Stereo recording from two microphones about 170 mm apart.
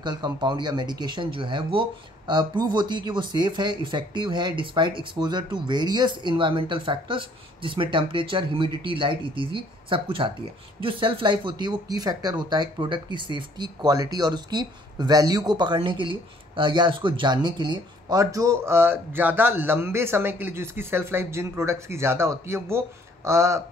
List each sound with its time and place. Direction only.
0.0 s speech: 25° right (ahead or behind)